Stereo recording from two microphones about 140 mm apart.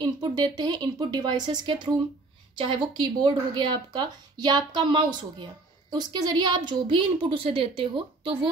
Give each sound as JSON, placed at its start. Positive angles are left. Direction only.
{"t": 0.0, "sound": "a woman's voice", "side_deg": -30}